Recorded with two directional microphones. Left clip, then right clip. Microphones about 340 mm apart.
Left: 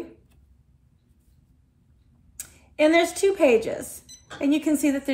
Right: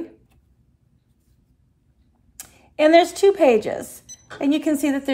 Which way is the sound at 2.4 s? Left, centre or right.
Right.